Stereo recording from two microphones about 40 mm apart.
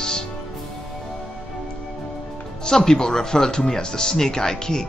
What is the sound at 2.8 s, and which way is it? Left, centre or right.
Speech, centre.